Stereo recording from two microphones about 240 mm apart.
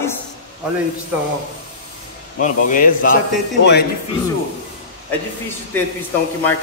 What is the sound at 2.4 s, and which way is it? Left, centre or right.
Speech, left.